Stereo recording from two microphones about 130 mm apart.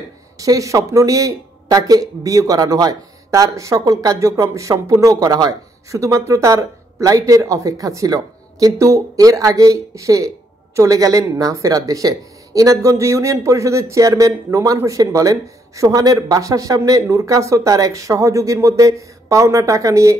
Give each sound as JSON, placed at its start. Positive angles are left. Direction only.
{"t": 0.4, "sound": "speech", "side_deg": -25}